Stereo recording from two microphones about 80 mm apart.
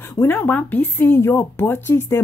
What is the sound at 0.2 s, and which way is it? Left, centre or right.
Speech, left.